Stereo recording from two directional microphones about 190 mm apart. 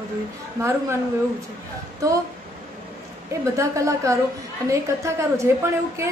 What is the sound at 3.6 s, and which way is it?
A woman's voice, 15° right (ahead or behind).